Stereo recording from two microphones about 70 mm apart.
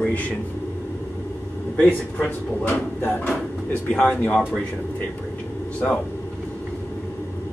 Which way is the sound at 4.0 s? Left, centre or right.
Left.